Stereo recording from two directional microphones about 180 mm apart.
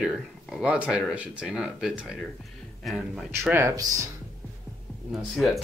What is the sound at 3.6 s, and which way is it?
Speech, 15° right (ahead or behind).